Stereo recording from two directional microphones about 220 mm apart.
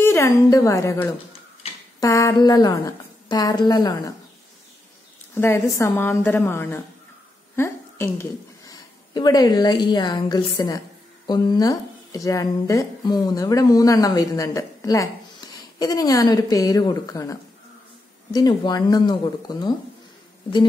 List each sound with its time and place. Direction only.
0.0 s speech: 10° left (ahead or behind)
5.3 s a woman's voice: 10° left (ahead or behind)